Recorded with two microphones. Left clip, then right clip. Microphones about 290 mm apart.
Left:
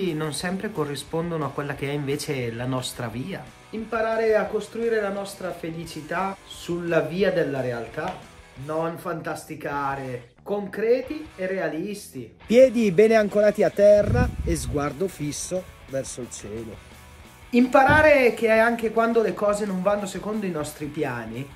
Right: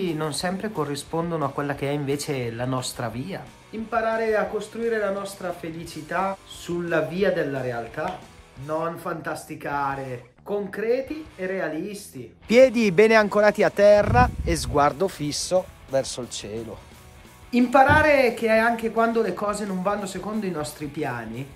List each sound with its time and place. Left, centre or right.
0.0 s speech: centre
12.4 s speech: centre
17.5 s speech: centre